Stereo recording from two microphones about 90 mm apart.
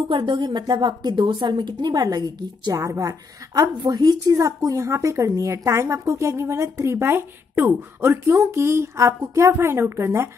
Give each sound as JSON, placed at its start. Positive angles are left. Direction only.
{"t": 0.1, "sound": "a woman's voice", "side_deg": -65}